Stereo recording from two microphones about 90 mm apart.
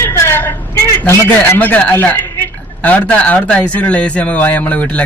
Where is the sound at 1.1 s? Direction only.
20° left (ahead or behind).